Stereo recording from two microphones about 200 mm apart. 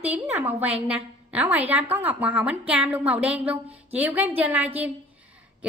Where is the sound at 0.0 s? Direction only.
5° right (ahead or behind).